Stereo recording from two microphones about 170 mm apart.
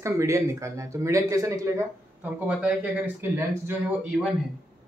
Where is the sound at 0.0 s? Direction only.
15° right (ahead or behind).